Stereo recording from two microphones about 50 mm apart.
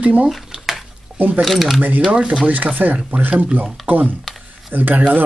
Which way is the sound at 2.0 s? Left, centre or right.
Centre.